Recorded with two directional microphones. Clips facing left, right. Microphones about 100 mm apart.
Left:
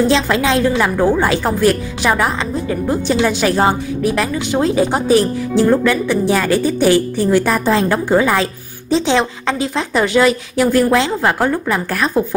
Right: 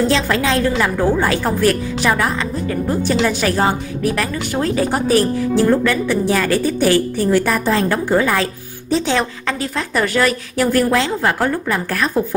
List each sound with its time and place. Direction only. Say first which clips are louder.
0.1 s a woman's voice: left 2 dB; 20° left (ahead or behind)